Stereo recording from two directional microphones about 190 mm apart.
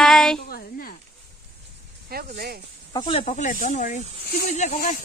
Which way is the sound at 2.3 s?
50° right (ahead or behind).